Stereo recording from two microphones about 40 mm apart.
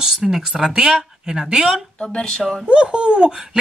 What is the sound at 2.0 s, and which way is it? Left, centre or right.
Speech, left.